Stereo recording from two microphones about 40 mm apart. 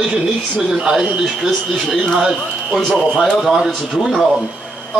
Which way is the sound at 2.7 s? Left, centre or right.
Centre.